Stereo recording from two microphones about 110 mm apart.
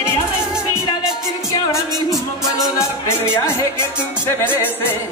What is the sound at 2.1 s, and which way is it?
Music, centre (ahead or behind).